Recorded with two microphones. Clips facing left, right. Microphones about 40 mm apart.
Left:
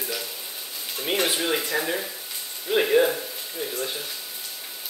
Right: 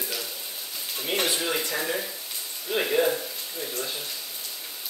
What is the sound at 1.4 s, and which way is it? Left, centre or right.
Speech, centre.